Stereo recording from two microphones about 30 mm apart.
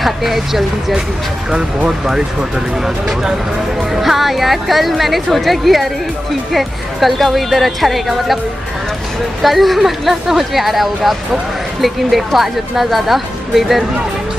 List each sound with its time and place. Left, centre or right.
0.0 s speech: centre
4.0 s speech: centre
9.4 s speech: centre